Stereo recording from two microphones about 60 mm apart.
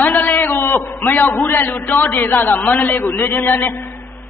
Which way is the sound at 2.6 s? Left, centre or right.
Left.